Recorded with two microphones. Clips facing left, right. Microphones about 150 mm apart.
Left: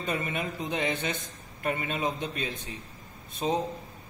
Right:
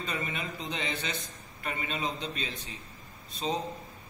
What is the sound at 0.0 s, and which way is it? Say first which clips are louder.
A man's voice: left 4 dB; 50° left (ahead or behind).